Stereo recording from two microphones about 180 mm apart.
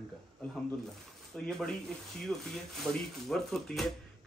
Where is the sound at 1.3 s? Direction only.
5° left (ahead or behind).